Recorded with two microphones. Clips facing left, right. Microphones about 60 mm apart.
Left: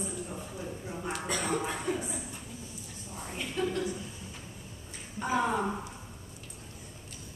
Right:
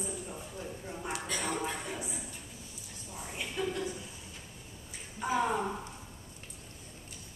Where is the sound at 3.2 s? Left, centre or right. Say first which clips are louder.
Left 3 dB; centre.